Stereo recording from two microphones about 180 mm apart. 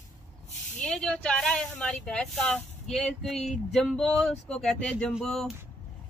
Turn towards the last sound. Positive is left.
turn(degrees=0)  # may be behind; listen again after turning